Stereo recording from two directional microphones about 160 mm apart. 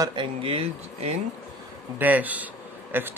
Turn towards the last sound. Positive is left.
turn(degrees=-15)  # may be behind; listen again after turning